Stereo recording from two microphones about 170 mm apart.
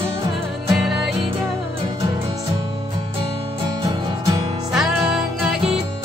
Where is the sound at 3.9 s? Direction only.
20° right (ahead or behind).